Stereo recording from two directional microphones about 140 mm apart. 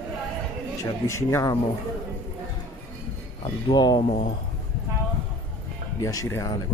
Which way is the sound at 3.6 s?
30° left (ahead or behind).